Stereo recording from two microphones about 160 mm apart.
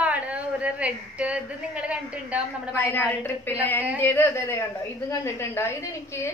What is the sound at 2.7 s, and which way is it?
A woman's voice, 15° left (ahead or behind).